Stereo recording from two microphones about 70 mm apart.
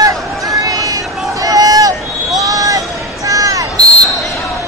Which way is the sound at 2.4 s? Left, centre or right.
Right.